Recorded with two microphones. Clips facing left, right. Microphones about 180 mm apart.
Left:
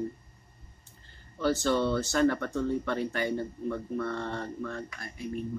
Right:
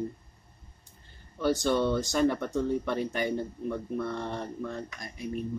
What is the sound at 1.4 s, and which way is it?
Speech, 15° right (ahead or behind).